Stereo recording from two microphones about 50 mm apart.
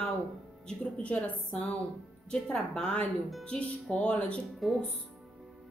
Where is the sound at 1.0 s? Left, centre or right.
Left.